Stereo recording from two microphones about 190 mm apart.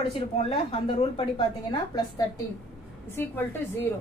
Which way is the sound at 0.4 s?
30° left (ahead or behind).